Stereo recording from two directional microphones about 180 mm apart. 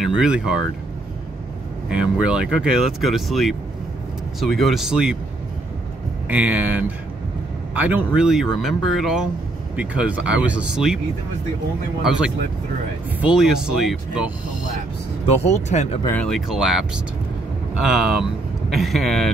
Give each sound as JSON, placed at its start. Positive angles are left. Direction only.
{"t": 0.0, "sound": "speech", "side_deg": -5}
{"t": 1.9, "sound": "speech", "side_deg": -5}
{"t": 6.2, "sound": "speech", "side_deg": -10}
{"t": 12.0, "sound": "speech", "side_deg": -5}
{"t": 15.2, "sound": "speech", "side_deg": 35}
{"t": 16.1, "sound": "speech", "side_deg": 5}